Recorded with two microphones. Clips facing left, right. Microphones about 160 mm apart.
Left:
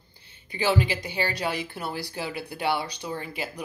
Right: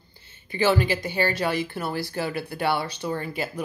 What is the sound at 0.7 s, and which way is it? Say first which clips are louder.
Speech: right 3 dB; 50° right (ahead or behind).